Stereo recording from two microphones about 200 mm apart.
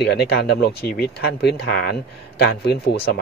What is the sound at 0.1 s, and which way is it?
A man's voice, 55° left (ahead or behind).